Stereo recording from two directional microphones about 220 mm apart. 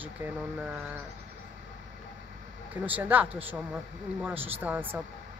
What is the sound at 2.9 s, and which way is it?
Speech, 5° right (ahead or behind).